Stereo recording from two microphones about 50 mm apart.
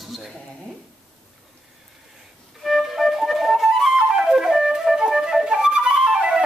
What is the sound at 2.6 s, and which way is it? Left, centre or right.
Flute, centre.